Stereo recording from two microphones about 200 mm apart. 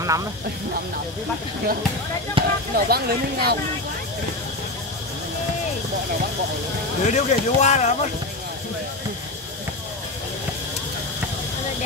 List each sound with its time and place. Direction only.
0.0 s speech: 15° right (ahead or behind)
2.4 s speech: 25° right (ahead or behind)
2.7 s speech: 50° right (ahead or behind)
7.1 s speech: 35° left (ahead or behind)